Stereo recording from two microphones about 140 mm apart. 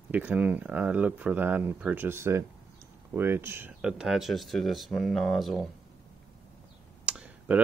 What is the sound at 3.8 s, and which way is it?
Speech, 5° right (ahead or behind).